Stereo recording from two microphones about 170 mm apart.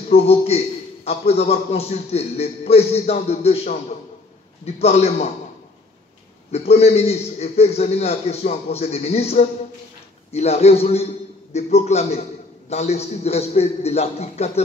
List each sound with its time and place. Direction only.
0.1 s a man's voice: 35° left (ahead or behind)
4.7 s a man's voice: 40° left (ahead or behind)
6.5 s a man's voice: 40° left (ahead or behind)